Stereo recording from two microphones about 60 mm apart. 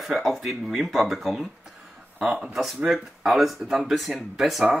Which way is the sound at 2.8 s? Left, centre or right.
Centre.